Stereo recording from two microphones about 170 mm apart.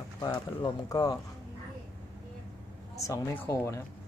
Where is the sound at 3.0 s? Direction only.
20° left (ahead or behind).